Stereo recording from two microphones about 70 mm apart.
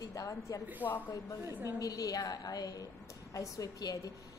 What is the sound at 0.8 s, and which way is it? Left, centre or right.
Speech, left.